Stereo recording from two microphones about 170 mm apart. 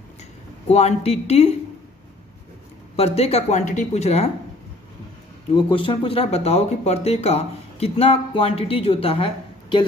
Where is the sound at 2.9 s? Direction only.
35° left (ahead or behind).